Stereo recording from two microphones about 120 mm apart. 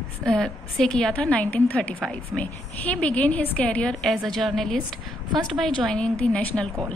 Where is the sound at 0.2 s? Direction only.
5° left (ahead or behind).